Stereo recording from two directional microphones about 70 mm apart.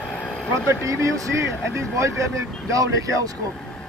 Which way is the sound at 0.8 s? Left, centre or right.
Right.